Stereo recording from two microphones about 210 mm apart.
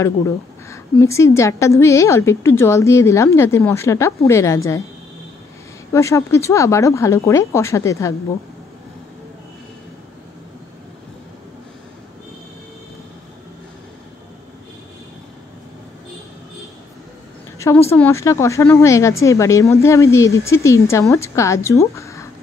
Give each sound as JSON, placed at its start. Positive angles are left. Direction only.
{"t": 0.7, "sound": "speech", "side_deg": 15}
{"t": 5.9, "sound": "speech", "side_deg": 15}
{"t": 17.6, "sound": "speech", "side_deg": 15}